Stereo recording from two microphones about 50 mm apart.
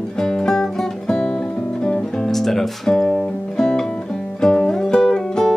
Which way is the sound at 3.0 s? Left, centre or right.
Left.